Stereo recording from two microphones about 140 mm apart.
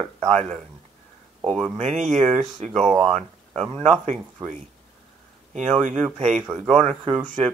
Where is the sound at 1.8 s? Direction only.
55° right (ahead or behind).